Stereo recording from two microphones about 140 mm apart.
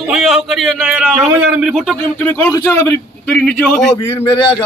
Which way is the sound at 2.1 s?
10° left (ahead or behind).